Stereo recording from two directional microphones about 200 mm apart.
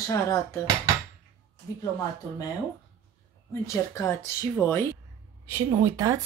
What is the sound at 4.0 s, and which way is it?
Speech, 10° left (ahead or behind).